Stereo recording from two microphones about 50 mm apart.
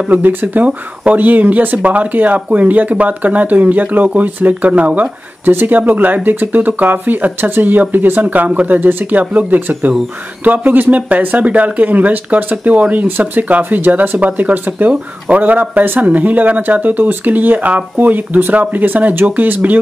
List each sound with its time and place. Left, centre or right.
0.1 s speech: right